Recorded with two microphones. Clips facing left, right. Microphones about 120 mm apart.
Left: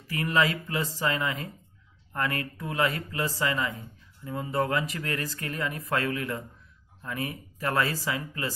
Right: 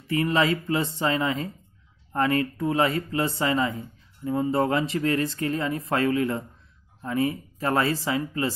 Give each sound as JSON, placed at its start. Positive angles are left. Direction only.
{"t": 0.0, "sound": "speech", "side_deg": -25}